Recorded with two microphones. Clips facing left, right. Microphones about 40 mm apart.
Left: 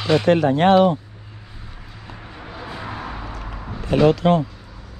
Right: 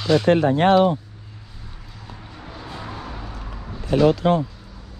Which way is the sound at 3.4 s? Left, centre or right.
Left.